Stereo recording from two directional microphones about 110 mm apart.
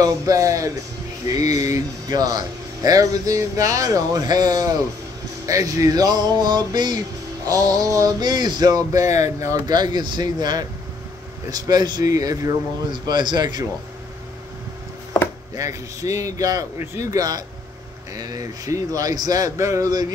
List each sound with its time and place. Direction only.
0.0 s speech: 30° right (ahead or behind)
1.2 s a sound: 35° right (ahead or behind)
1.6 s speech: 35° right (ahead or behind)
15.5 s a man's voice: 30° right (ahead or behind)